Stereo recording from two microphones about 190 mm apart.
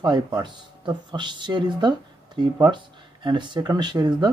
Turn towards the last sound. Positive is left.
turn(degrees=-25)  # may be behind; listen again after turning